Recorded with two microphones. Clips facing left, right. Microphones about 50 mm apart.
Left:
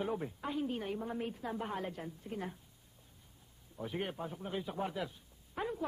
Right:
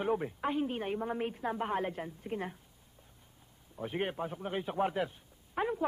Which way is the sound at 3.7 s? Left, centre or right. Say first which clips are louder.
Right 4 dB; right.